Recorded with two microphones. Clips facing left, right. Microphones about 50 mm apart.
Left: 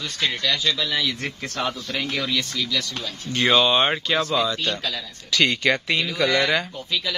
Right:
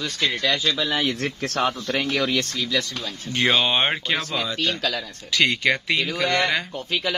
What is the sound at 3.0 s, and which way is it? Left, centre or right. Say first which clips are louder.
Speech: even; centre.